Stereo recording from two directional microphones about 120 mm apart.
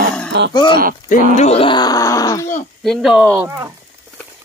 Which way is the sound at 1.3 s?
70° left (ahead or behind).